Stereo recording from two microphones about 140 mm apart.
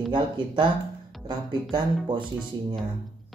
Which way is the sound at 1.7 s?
35° right (ahead or behind).